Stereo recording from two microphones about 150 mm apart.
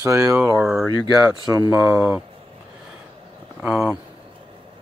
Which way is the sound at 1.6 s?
20° right (ahead or behind).